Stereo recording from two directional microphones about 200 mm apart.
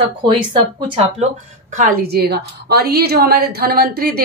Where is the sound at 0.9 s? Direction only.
30° right (ahead or behind).